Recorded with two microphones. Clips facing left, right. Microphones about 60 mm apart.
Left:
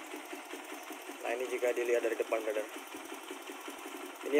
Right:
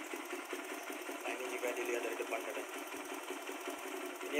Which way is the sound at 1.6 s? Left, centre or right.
Left.